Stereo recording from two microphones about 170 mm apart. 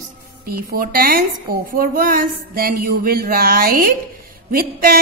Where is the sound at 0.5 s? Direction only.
60° right (ahead or behind).